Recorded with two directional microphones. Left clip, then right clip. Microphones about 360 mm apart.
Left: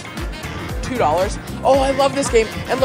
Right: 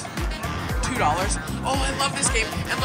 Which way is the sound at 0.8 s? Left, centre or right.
Centre.